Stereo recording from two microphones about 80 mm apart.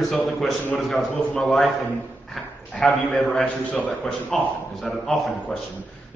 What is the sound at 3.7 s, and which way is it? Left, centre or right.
Speech, centre.